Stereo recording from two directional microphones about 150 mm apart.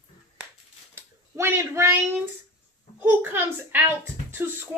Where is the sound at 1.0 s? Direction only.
15° right (ahead or behind).